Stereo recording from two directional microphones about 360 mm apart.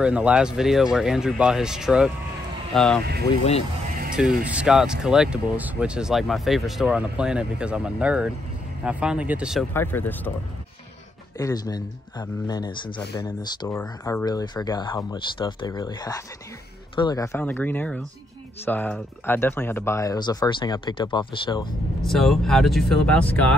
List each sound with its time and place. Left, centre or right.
0.0 s speech: centre
3.3 s speech: centre
4.1 s speech: centre
11.3 s speech: centre
22.0 s speech: centre